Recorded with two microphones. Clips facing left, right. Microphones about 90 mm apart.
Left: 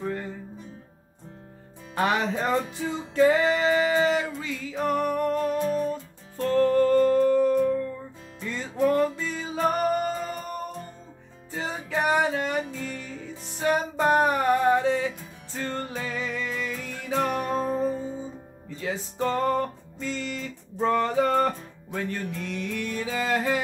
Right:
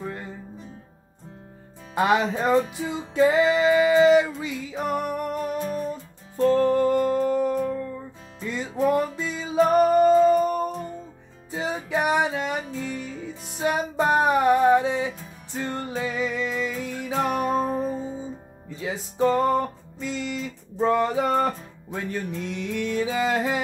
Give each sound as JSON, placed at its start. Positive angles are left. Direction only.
{"t": 2.0, "sound": "music", "side_deg": -15}